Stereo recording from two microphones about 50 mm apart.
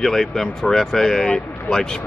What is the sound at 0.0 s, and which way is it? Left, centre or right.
Speech, centre.